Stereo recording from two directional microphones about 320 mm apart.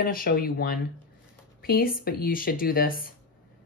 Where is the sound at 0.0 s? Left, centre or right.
Left.